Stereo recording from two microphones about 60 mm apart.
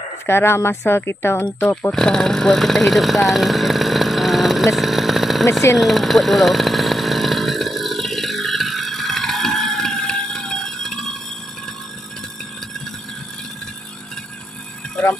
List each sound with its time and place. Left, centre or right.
0.3 s speech: left
1.9 s speech: centre
5.8 s chainsaw: centre
15.0 s music: centre